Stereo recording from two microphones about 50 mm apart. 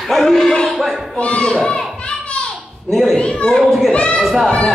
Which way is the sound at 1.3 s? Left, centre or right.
Left.